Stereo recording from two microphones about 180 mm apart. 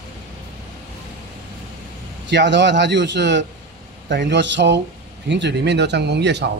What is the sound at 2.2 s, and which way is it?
A man's voice, 80° right.